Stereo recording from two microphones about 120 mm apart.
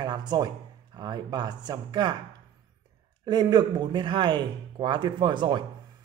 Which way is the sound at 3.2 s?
35° right (ahead or behind).